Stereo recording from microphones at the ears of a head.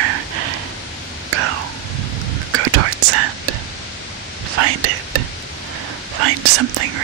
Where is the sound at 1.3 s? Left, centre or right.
Right.